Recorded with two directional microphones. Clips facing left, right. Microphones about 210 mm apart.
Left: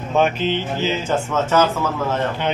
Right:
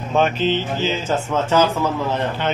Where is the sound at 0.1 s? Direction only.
10° left (ahead or behind).